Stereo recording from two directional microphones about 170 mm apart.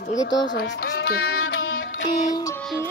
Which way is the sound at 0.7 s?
80° left.